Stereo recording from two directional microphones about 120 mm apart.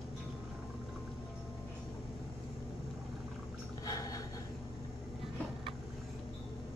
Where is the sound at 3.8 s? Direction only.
30° left (ahead or behind).